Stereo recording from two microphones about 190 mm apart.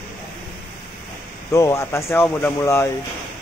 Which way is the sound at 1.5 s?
15° left (ahead or behind).